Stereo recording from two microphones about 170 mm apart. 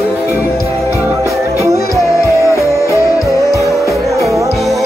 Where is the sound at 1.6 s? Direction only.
20° right (ahead or behind).